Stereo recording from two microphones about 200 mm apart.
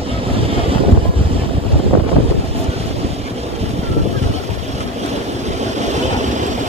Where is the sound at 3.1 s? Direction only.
30° right (ahead or behind).